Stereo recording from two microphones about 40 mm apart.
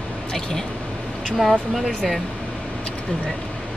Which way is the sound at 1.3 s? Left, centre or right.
Centre.